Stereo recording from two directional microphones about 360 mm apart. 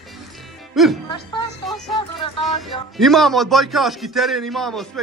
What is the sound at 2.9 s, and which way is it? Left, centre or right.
A man's voice, centre.